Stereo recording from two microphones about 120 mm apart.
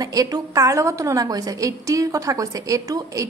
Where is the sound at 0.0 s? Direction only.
30° right (ahead or behind).